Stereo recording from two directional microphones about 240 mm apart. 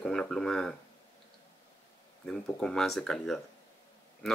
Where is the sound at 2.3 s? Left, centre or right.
Centre.